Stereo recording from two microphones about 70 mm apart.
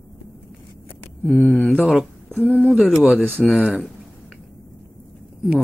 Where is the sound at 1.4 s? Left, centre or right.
Left; by 3.5 s centre.